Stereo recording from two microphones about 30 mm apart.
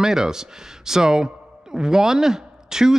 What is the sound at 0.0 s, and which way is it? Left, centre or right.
Speech, centre.